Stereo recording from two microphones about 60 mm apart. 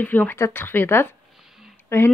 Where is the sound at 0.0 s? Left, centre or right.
Left.